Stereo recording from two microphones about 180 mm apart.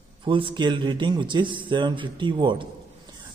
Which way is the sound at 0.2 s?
30° right (ahead or behind).